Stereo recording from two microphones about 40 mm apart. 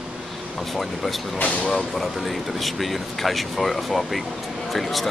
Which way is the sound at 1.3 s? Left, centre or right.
Left.